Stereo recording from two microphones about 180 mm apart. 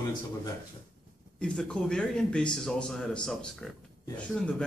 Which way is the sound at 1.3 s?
5° left (ahead or behind).